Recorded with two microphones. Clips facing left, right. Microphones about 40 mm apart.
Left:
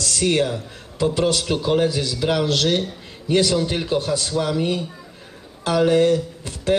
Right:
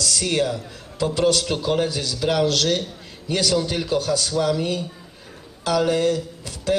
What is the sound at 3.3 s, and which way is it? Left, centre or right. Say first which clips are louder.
A man's voice: left 3 dB; left.